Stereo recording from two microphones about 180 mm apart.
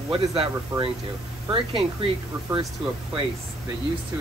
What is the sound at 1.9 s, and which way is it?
Speech, 30° right (ahead or behind).